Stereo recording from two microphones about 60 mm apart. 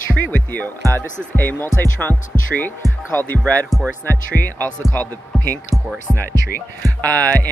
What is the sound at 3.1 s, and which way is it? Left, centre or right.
Speech, left.